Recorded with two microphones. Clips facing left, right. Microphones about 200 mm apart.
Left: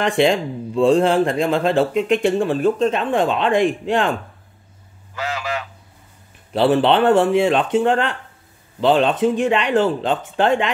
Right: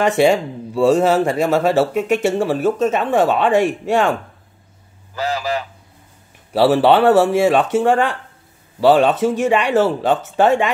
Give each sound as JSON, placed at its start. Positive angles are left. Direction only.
{"t": 0.0, "sound": "speech", "side_deg": -5}
{"t": 5.1, "sound": "a sound", "side_deg": -35}
{"t": 6.5, "sound": "speech", "side_deg": -10}